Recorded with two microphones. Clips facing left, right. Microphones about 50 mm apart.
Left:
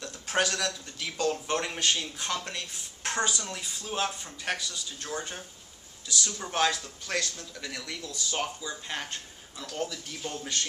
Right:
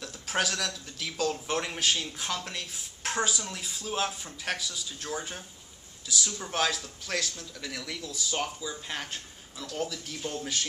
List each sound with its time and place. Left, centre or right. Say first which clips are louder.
0.0 s a man's voice: left 2 dB; centre